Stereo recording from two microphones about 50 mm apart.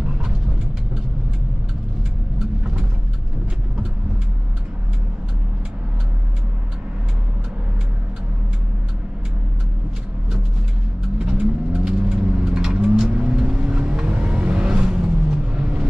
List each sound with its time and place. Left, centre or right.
11.1 s vehicle: right